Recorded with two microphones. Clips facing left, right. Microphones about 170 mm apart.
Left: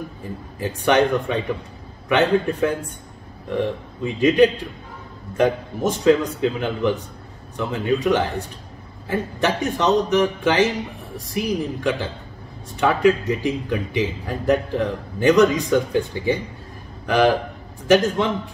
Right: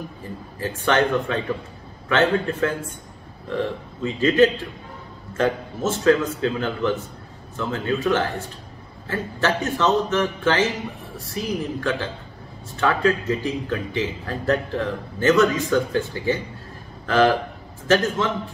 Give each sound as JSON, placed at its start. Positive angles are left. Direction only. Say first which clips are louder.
{"t": 0.6, "sound": "a man's voice", "louder": "left 3 dB", "side_deg": 15}